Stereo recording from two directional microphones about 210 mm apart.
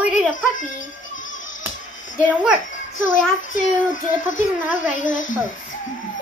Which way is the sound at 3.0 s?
40° left (ahead or behind).